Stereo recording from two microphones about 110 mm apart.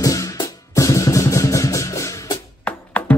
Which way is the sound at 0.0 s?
30° left (ahead or behind).